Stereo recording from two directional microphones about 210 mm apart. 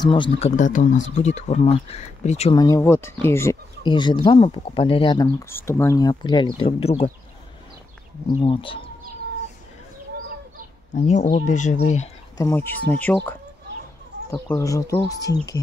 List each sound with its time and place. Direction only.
0.0 s speech: 25° left (ahead or behind)
2.5 s speech: 15° left (ahead or behind)
8.4 s speech: 25° left (ahead or behind)
11.3 s speech: 35° left (ahead or behind)
12.4 s speech: 10° left (ahead or behind)
14.3 s speech: 15° left (ahead or behind)